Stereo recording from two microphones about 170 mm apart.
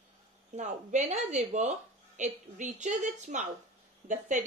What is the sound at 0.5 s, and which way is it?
Speech, 45° right (ahead or behind).